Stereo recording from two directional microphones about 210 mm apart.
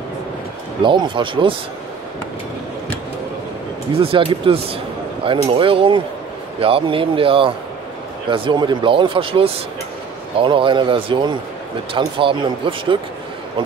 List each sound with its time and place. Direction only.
0.8 s speech: 25° right (ahead or behind)
4.0 s speech: 25° right (ahead or behind)